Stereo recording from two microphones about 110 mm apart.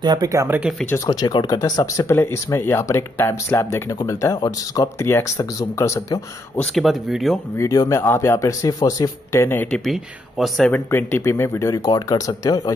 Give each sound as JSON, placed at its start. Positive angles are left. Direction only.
{"t": 0.0, "sound": "speech", "side_deg": -40}
{"t": 0.5, "sound": "speech", "side_deg": -15}
{"t": 1.2, "sound": "speech", "side_deg": 40}
{"t": 6.7, "sound": "speech", "side_deg": 0}
{"t": 7.5, "sound": "speech", "side_deg": 30}
{"t": 8.0, "sound": "speech", "side_deg": 20}
{"t": 10.7, "sound": "speech", "side_deg": 20}